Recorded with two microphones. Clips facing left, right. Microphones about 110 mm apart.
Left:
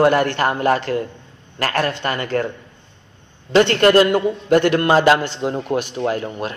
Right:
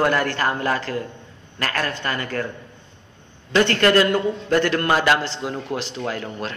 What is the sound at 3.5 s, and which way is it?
Speech, 25° left (ahead or behind).